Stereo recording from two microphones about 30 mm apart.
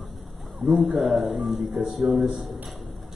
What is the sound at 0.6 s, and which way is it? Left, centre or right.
Speech, centre.